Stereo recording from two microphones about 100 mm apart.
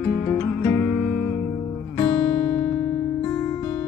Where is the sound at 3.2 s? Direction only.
25° left (ahead or behind).